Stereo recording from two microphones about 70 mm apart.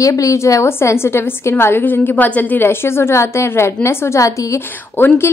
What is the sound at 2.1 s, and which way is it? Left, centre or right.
Speech, left.